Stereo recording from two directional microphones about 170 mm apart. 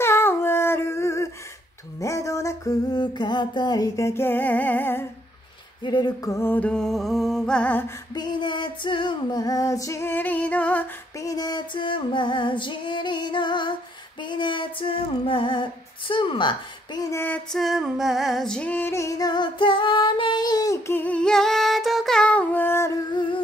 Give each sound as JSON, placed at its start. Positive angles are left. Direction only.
{"t": 0.0, "sound": "a sound", "side_deg": 15}
{"t": 2.0, "sound": "music", "side_deg": 20}
{"t": 5.9, "sound": "music", "side_deg": 25}
{"t": 8.1, "sound": "music", "side_deg": 25}
{"t": 14.2, "sound": "female singing", "side_deg": 25}